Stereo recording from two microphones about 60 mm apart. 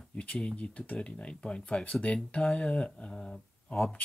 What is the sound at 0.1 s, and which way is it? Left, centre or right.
Speech, centre.